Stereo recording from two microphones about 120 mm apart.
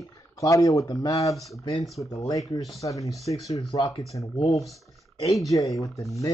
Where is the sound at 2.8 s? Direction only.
25° left (ahead or behind).